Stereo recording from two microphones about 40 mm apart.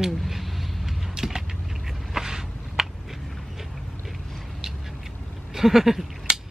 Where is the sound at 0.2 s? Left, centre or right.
Centre.